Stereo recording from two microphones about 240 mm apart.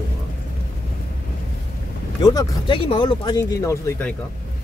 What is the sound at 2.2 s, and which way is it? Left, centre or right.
Speech, centre.